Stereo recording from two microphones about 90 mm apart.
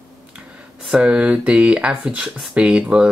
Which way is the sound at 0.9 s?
15° right (ahead or behind).